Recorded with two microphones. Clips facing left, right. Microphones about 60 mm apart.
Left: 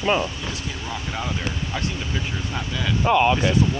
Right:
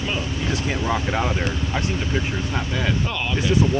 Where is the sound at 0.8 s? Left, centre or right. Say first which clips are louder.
Right 6 dB; right.